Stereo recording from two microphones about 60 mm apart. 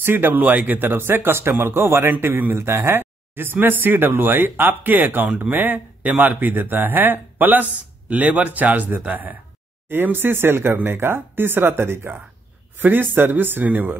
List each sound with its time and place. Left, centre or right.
0.0 s speech: right